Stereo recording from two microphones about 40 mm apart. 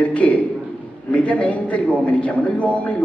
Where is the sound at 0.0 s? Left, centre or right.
Left.